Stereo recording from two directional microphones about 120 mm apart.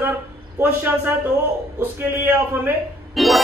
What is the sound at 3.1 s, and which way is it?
Music, centre (ahead or behind).